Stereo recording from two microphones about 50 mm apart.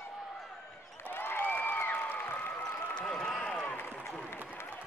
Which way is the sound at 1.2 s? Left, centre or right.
Left.